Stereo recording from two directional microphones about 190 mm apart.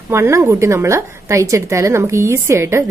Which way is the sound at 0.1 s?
15° right (ahead or behind).